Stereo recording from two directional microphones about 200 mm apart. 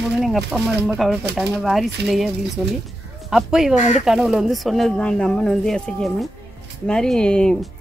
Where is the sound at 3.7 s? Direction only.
35° left (ahead or behind).